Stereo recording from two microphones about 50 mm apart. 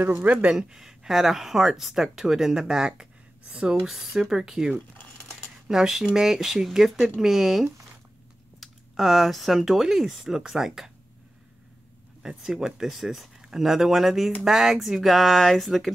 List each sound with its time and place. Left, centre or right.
0.2 s speech: right
0.6 s speech: centre
3.0 s a sound: centre
3.9 s speech: centre
12.2 s speech: centre